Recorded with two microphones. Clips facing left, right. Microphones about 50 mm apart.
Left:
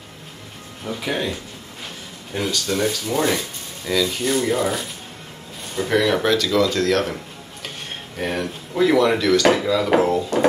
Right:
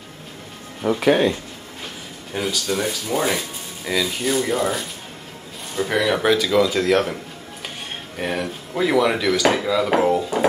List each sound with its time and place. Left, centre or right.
0.8 s speech: right
2.3 s speech: centre
8.2 s speech: centre